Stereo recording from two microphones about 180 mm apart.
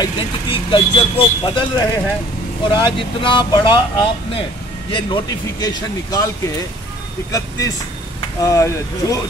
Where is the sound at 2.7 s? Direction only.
25° left (ahead or behind).